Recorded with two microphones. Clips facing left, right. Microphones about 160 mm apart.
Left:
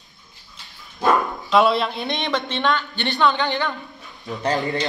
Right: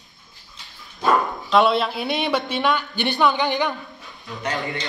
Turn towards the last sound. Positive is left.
turn(degrees=35)  # may be behind; listen again after turning